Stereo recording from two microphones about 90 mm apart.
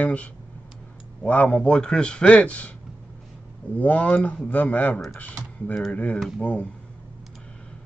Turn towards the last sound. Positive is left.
turn(degrees=15)  # may be behind; listen again after turning